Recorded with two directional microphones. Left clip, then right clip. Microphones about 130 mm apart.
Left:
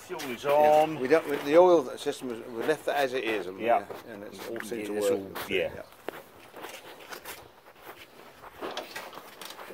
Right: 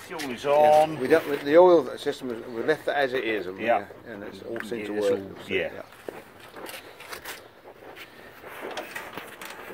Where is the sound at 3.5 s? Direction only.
50° left (ahead or behind).